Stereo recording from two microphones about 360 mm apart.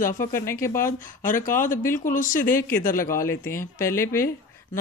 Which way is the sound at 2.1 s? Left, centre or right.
Left.